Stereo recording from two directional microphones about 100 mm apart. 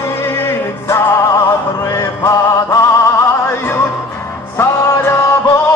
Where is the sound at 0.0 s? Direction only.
30° left (ahead or behind).